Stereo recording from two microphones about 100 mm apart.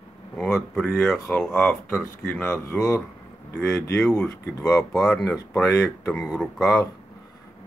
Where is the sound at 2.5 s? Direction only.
30° left (ahead or behind).